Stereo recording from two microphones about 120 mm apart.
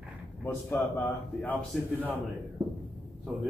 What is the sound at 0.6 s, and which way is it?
Speech, 15° left (ahead or behind).